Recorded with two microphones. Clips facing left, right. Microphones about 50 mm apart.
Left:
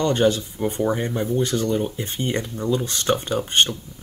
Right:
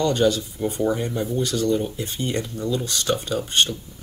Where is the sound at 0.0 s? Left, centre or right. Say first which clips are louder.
Left 1 dB; left.